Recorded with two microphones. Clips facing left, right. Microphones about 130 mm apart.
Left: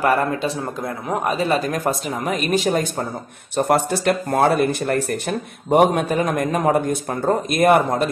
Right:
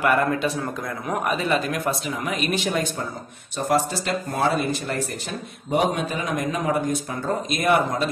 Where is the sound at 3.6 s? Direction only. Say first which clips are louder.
Left 4 dB; 60° left (ahead or behind).